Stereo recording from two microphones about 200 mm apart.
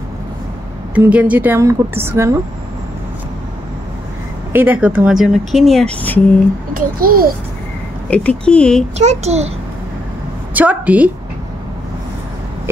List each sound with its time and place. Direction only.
0.9 s a woman's voice: 5° right (ahead or behind)
4.5 s speech: 10° right (ahead or behind); by 6.2 s 5° left (ahead or behind)
6.7 s a child's voice: 45° right (ahead or behind)
8.1 s speech: 5° left (ahead or behind)
8.9 s a child's voice: 35° right (ahead or behind)
10.5 s a woman's voice: 5° right (ahead or behind)